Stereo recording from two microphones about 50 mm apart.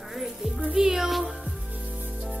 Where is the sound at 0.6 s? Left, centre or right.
Right.